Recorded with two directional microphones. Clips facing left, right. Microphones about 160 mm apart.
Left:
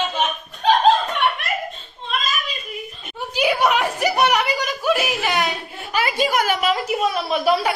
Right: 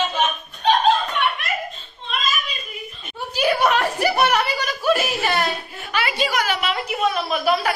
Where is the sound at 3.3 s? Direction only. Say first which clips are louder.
Even; 15° left (ahead or behind).